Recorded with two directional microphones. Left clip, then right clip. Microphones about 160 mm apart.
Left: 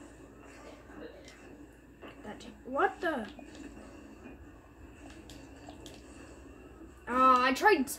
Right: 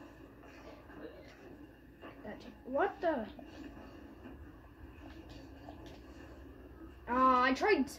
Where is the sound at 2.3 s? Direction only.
45° left (ahead or behind).